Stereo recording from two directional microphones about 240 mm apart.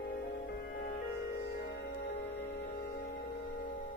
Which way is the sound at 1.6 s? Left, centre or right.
Left.